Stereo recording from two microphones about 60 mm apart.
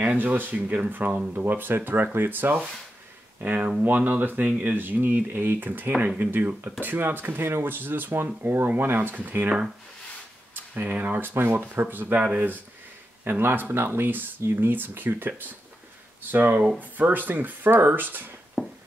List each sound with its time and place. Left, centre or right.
0.0 s speech: right
10.5 s speech: right
18.6 s a sound: centre